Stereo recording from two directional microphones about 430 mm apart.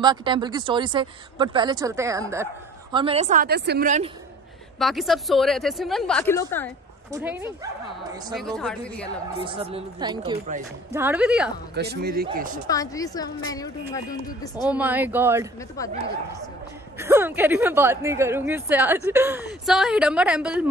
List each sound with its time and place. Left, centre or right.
0.0 s speech: centre
4.7 s a woman's voice: centre
7.1 s speech: centre
8.5 s a woman's voice: centre
9.4 s speech: centre
11.7 s speech: right
12.6 s speech: centre
14.7 s a woman's voice: centre
17.0 s a woman's voice: centre